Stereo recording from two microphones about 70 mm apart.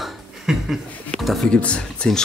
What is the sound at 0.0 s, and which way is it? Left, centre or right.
Chuckle, centre.